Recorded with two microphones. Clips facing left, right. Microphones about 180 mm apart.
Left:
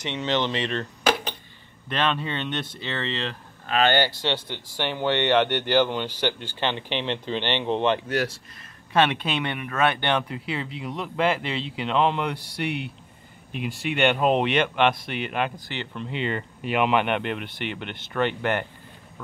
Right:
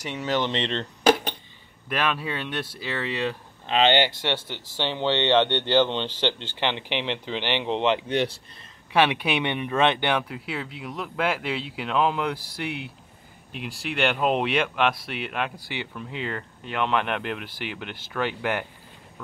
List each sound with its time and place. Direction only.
0.1 s speech: 10° right (ahead or behind)
0.5 s speech: 25° right (ahead or behind)
1.9 s speech: 10° right (ahead or behind)
3.6 s speech: 20° right (ahead or behind)
4.5 s speech: 15° left (ahead or behind)
4.9 s speech: 20° right (ahead or behind)
8.1 s speech: 5° left (ahead or behind)
8.9 s speech: 10° right (ahead or behind)